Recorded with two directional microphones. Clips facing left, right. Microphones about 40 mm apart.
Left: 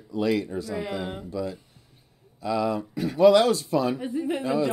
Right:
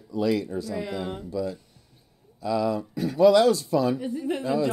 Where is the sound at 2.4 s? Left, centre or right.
Left.